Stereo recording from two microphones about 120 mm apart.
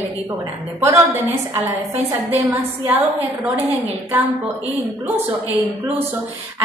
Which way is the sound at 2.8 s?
15° right (ahead or behind).